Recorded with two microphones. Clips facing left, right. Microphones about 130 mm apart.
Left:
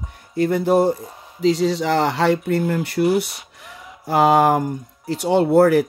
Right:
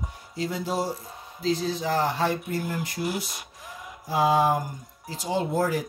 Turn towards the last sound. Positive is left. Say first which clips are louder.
# left 11 dB
turn(degrees=70)  # may be behind; listen again after turning